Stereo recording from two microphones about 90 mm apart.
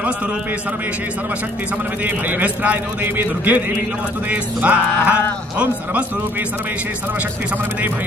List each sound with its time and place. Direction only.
2.0 s a man's voice: 20° right (ahead or behind)
4.3 s music: 15° right (ahead or behind)